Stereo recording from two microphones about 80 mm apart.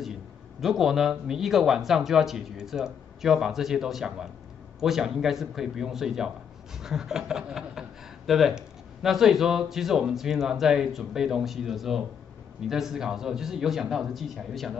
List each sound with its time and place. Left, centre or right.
0.6 s a man's voice: centre